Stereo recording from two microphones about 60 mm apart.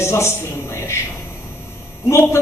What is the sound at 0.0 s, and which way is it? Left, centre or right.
Speech, left.